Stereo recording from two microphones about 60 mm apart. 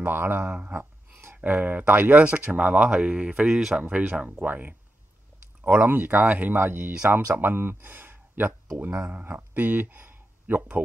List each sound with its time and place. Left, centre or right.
0.0 s speech: right
0.4 s speech: right
0.7 s speech: right; by 3.8 s centre
3.9 s speech: right
7.8 s a sound: right
8.7 s speech: right